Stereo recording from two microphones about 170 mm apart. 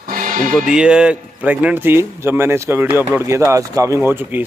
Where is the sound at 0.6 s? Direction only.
5° right (ahead or behind).